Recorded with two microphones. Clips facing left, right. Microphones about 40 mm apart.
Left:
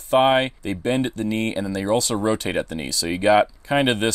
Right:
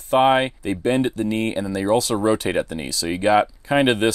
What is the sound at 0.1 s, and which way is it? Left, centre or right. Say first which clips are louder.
Speech: right 1 dB; centre.